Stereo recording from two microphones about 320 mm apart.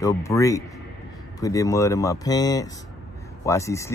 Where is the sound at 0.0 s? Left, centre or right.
Centre.